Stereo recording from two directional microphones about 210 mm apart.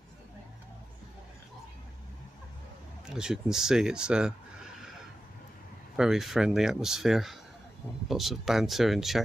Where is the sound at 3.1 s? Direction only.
5° right (ahead or behind).